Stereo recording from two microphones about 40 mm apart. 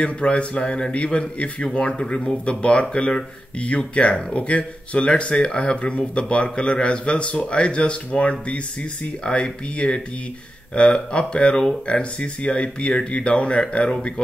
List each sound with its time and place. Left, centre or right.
0.0 s speech: left